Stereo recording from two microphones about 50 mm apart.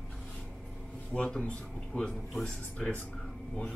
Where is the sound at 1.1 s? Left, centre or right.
Left.